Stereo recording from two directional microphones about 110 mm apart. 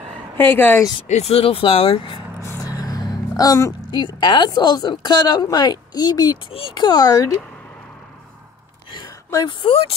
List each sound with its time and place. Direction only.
0.4 s speech: 20° left (ahead or behind)
1.0 s speech: 80° left; by 2.1 s 60° left (ahead or behind)
2.6 s vehicle: 35° left (ahead or behind)
3.9 s a woman's voice: 40° left (ahead or behind)
9.5 s speech: 50° left (ahead or behind)